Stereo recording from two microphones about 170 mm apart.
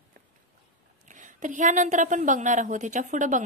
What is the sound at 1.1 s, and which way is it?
A woman's voice, 45° right (ahead or behind).